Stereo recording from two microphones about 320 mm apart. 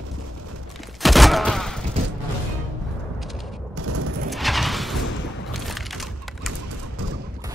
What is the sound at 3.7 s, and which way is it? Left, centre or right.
Fusillade, right.